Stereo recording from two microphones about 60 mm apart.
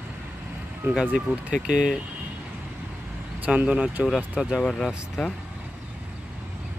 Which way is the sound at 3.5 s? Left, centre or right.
Right.